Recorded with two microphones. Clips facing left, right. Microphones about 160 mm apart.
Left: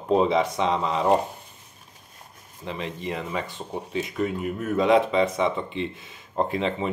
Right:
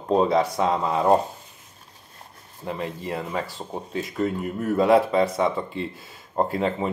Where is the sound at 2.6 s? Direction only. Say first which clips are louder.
Right 2 dB; 50° right (ahead or behind).